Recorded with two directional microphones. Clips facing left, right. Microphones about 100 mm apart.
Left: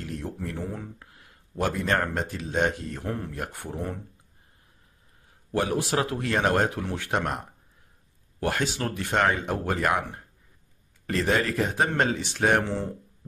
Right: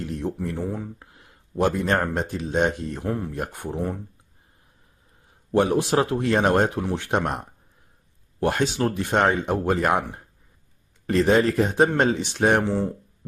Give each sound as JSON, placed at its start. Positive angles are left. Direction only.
{"t": 0.2, "sound": "speech", "side_deg": -20}
{"t": 5.5, "sound": "speech", "side_deg": -25}
{"t": 11.1, "sound": "speech", "side_deg": -25}